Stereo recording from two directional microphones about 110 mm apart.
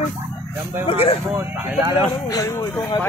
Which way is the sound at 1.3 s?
25° right (ahead or behind).